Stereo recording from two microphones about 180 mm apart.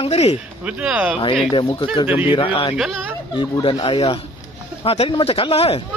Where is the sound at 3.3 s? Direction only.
25° left (ahead or behind).